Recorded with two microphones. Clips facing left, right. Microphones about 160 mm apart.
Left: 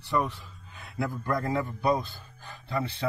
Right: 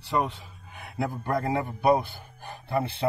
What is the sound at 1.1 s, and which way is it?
Speech, 30° right (ahead or behind).